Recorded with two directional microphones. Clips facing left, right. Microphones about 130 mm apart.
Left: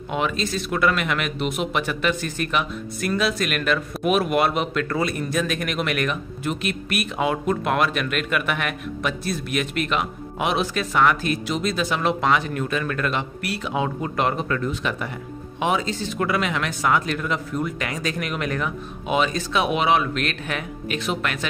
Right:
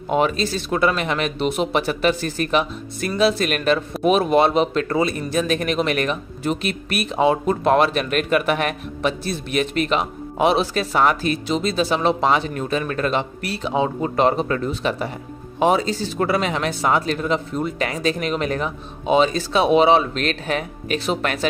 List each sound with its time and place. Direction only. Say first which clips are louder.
0.1 s a man's voice: right 5 dB; 40° right (ahead or behind)